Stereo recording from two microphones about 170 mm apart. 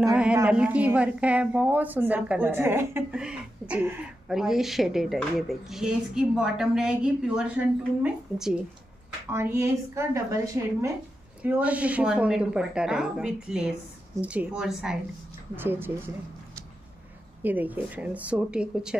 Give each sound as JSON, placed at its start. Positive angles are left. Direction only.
{"t": 0.1, "sound": "a woman's voice", "side_deg": -5}
{"t": 17.4, "sound": "a woman's voice", "side_deg": -10}